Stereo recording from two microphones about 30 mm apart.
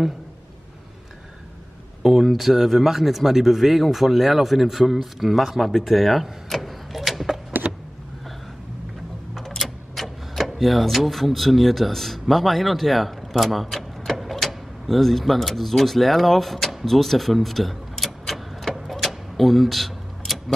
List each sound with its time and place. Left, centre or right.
2.2 s speech: centre
5.7 s speech: centre
6.5 s a sound: centre
7.7 s power windows: right
9.6 s speech: centre
13.7 s vehicle: centre
14.1 s speech: centre
18.9 s a sound: centre